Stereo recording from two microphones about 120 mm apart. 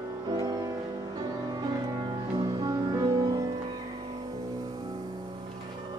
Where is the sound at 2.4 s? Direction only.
35° right (ahead or behind).